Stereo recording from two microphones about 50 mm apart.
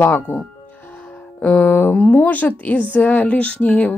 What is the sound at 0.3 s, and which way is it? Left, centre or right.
Speech, left.